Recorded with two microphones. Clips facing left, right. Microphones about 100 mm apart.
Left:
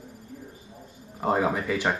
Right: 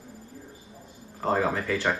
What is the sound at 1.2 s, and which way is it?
Speech, 15° left (ahead or behind).